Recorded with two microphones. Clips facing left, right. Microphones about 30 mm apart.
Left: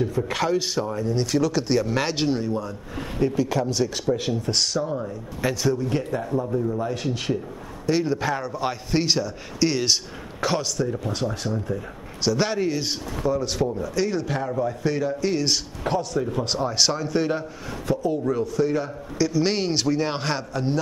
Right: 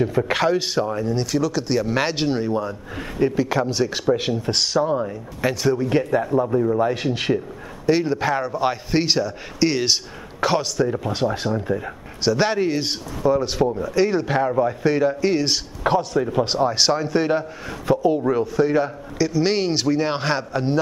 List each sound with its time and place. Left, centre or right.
0.0 s a man's voice: right
1.1 s speech: centre
1.9 s a man's voice: centre
4.8 s a man's voice: right
5.4 s a man's voice: centre
5.8 s a man's voice: right
7.8 s a man's voice: centre
19.1 s a man's voice: centre